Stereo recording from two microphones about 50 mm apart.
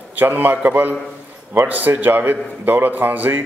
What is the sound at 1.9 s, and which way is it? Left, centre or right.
A man's voice, right.